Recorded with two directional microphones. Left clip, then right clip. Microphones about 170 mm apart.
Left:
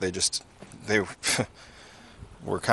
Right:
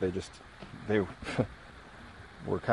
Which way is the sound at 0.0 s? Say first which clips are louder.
Left 6 dB; 15° left (ahead or behind).